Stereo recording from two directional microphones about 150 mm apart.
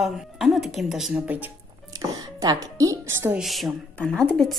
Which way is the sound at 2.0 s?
25° right (ahead or behind).